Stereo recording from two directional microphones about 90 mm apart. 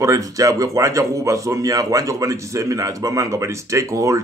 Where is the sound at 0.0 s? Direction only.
40° right (ahead or behind).